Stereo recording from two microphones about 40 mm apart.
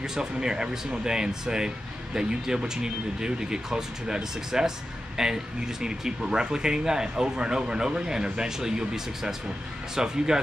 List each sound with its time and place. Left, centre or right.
0.0 s speech: centre